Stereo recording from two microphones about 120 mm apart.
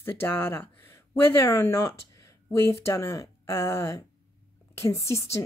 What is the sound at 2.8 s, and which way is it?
Speech, 25° left (ahead or behind).